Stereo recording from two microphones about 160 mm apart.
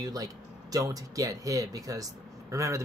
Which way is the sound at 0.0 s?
20° right (ahead or behind).